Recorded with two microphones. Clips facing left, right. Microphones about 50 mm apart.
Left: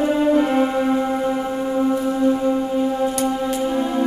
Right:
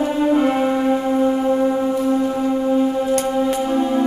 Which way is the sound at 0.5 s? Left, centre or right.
Centre.